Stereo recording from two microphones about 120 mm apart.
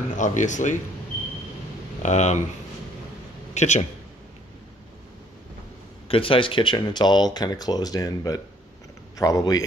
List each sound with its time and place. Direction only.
0.1 s speech: 90° left
2.0 s speech: 80° left
3.5 s speech: 80° left
6.0 s a man's voice: 50° left (ahead or behind); by 9.6 s 30° left (ahead or behind)